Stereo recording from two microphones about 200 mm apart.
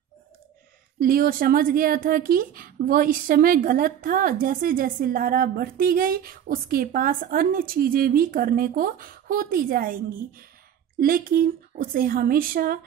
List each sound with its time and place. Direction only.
0.9 s speech: 45° right (ahead or behind)